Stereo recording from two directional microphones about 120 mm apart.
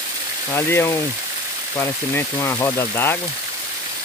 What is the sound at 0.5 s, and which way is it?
Speech, 20° left (ahead or behind).